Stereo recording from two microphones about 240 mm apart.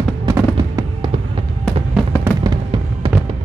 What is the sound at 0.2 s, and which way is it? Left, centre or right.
Fireworks, centre.